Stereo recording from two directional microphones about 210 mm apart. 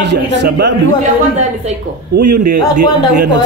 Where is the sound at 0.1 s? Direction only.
55° right (ahead or behind).